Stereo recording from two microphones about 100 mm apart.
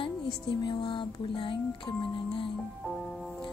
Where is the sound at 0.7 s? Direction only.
55° left (ahead or behind).